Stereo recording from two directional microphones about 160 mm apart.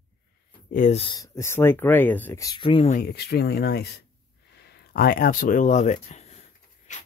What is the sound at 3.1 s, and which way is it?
Speech, 90° left.